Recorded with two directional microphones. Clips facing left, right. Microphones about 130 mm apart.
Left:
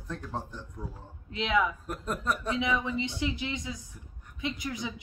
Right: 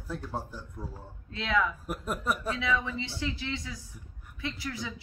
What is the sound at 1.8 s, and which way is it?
Speech, 5° right (ahead or behind).